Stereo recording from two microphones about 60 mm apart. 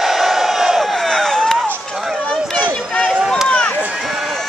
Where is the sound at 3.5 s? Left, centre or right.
Left.